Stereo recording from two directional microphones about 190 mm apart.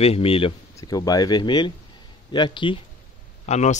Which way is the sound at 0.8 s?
20° left (ahead or behind).